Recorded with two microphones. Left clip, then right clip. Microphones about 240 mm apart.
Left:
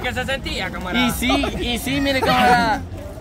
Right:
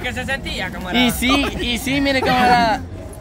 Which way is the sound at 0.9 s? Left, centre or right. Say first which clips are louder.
Right 3 dB; right.